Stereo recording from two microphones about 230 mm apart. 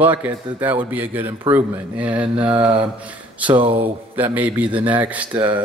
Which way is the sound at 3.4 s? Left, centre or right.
Right.